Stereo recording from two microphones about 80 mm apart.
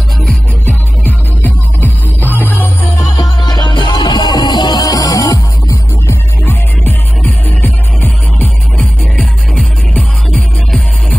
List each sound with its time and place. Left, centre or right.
1.0 s music: left
3.2 s music: left
6.4 s music: left
9.2 s music: centre